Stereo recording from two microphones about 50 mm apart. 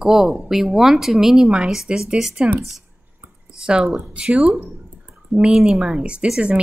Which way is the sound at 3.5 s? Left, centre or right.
Centre.